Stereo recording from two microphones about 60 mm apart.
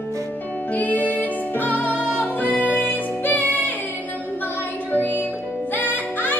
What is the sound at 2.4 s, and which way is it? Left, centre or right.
Music, left.